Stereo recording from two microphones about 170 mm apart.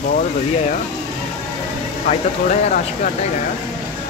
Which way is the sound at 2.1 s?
40° left (ahead or behind).